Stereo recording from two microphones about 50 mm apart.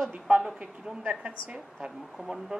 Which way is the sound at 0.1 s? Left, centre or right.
Right.